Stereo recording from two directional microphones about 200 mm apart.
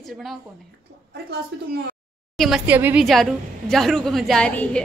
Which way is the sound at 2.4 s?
5° right (ahead or behind).